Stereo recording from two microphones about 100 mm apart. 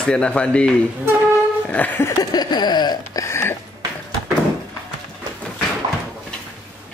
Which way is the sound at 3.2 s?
30° left (ahead or behind).